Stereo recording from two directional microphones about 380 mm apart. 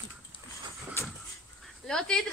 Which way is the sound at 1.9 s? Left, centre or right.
Centre.